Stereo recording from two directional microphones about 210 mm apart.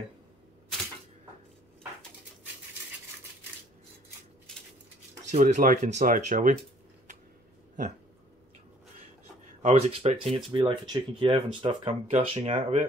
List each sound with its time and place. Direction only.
5.3 s speech: 35° right (ahead or behind)
9.6 s speech: 30° right (ahead or behind)